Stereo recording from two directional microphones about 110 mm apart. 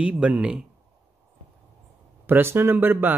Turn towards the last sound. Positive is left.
turn(degrees=-20)  # may be behind; listen again after turning